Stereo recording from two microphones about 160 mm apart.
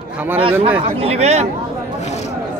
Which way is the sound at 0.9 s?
40° right (ahead or behind).